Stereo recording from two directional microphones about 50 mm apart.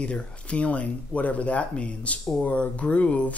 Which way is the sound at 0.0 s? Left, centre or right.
Left.